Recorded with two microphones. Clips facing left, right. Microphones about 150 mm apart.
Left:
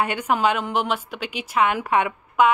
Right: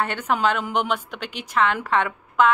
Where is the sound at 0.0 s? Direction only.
10° left (ahead or behind).